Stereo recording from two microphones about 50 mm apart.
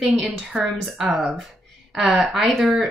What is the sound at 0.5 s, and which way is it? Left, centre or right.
Speech, centre.